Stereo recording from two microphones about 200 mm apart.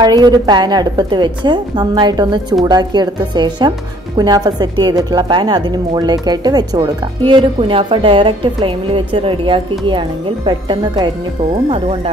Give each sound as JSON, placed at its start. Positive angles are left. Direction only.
{"t": 0.0, "sound": "a woman's voice", "side_deg": -20}